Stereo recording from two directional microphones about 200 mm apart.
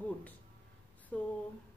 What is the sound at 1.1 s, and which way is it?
Speech, 5° left (ahead or behind).